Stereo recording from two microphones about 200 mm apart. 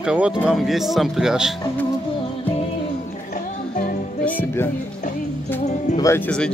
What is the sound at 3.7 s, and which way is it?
Music, 45° left (ahead or behind).